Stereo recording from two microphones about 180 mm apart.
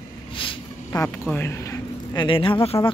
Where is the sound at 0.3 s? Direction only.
30° left (ahead or behind).